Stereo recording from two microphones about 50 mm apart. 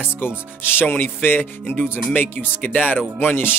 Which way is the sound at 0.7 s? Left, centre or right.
Left.